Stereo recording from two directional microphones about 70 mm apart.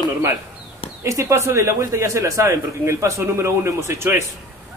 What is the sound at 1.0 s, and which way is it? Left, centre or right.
A man's voice, right.